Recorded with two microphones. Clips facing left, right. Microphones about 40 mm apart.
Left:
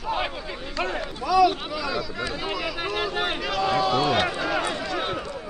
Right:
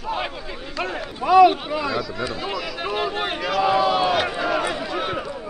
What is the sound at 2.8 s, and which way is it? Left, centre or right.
Speech, centre.